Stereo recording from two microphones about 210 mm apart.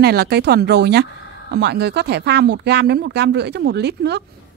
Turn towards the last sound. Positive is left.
turn(degrees=-50)  # may be behind; listen again after turning